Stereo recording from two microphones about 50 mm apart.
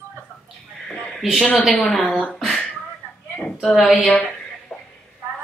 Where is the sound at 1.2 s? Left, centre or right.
Centre.